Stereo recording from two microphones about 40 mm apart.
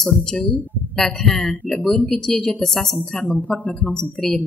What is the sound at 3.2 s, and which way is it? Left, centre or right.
Speech, left.